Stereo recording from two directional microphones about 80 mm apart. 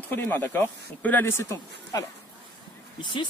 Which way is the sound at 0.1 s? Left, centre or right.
Left.